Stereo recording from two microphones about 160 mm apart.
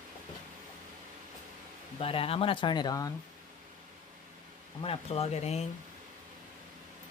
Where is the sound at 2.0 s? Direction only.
35° left (ahead or behind).